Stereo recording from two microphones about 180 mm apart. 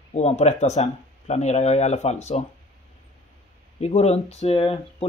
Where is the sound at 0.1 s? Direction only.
40° left (ahead or behind).